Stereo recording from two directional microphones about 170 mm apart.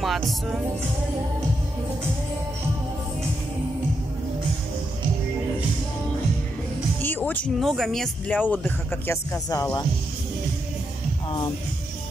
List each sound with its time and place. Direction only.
0.0 s music: centre (ahead or behind)
7.0 s speech: 10° left (ahead or behind)
11.2 s speech: 30° left (ahead or behind)